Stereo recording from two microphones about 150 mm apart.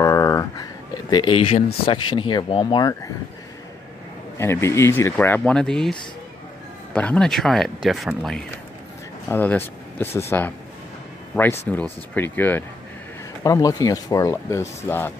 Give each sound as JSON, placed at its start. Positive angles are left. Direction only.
{"t": 0.0, "sound": "a sound", "side_deg": 20}
{"t": 1.9, "sound": "speech", "side_deg": 35}
{"t": 4.4, "sound": "speech", "side_deg": 15}
{"t": 9.3, "sound": "speech", "side_deg": 10}
{"t": 11.3, "sound": "speech", "side_deg": 15}
{"t": 13.4, "sound": "speech", "side_deg": 25}